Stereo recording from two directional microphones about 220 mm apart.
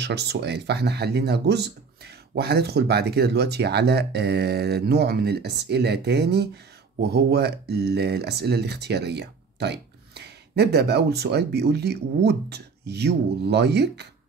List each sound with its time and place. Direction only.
0.0 s speech: 50° right (ahead or behind)